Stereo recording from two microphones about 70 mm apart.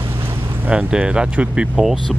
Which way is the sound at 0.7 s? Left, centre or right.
Centre.